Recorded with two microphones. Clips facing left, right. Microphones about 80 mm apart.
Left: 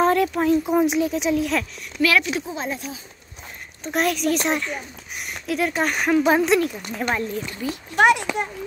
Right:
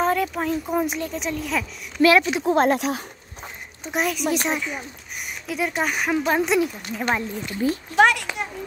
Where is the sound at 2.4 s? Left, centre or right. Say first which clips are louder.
Right 10 dB; right.